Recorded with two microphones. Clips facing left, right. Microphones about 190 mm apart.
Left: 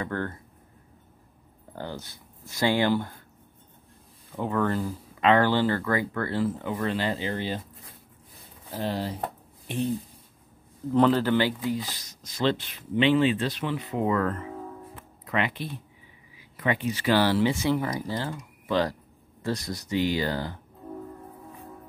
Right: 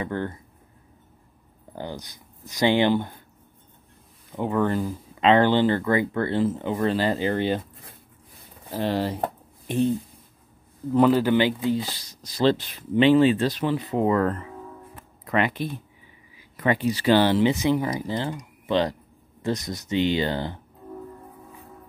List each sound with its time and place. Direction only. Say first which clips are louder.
0.0 s speech: right 2 dB; 15° right (ahead or behind)
1.8 s speech: right 2 dB; 15° right (ahead or behind)
4.4 s speech: right 3 dB; 20° right (ahead or behind); by 7.6 s 60° right (ahead or behind)
8.7 s speech: right 5 dB; 75° right (ahead or behind)
10.9 s speech: right 3 dB; 10° right (ahead or behind); by 14.4 s 35° right (ahead or behind)
15.2 s speech: right 4 dB; 45° right (ahead or behind); by 20.5 s 25° right (ahead or behind)